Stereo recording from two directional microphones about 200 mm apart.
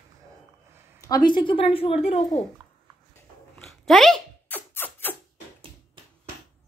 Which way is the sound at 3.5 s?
Centre (ahead or behind).